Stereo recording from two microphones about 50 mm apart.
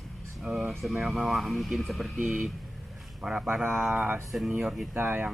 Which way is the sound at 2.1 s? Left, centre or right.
Right.